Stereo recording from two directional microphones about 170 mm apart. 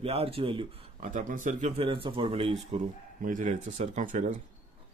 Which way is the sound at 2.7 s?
45° right (ahead or behind).